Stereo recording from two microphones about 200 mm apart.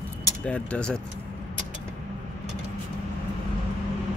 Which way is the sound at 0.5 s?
5° left (ahead or behind).